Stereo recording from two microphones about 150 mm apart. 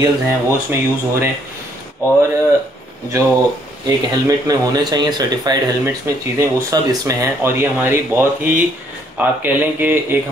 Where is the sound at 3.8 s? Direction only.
25° right (ahead or behind).